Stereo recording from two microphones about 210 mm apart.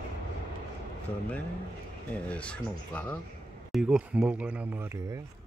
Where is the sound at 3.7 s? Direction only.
Centre (ahead or behind).